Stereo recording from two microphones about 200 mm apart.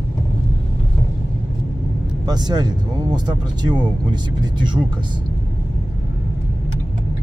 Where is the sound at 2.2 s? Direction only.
20° right (ahead or behind).